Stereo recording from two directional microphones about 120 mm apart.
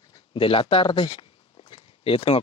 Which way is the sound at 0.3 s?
45° left (ahead or behind).